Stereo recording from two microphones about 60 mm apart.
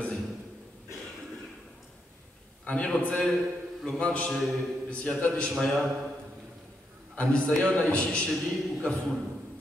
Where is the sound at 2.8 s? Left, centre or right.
Centre.